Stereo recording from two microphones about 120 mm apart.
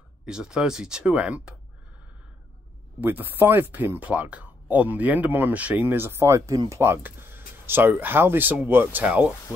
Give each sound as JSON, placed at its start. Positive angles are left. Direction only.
{"t": 0.2, "sound": "speech", "side_deg": -5}
{"t": 3.0, "sound": "speech", "side_deg": -15}